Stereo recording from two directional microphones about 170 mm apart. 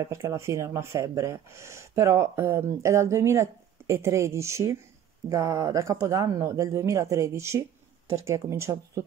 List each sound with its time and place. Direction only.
0.0 s speech: 15° right (ahead or behind)